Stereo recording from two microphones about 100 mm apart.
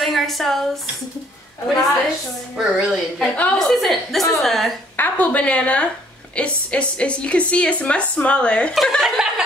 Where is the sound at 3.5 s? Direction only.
Centre (ahead or behind).